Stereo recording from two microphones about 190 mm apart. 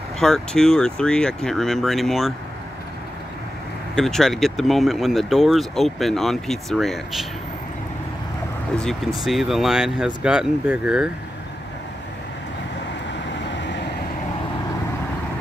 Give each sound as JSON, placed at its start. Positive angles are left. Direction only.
{"t": 0.2, "sound": "speech", "side_deg": 5}
{"t": 3.9, "sound": "speech", "side_deg": 0}
{"t": 8.7, "sound": "speech", "side_deg": 0}
{"t": 13.3, "sound": "vehicle", "side_deg": 70}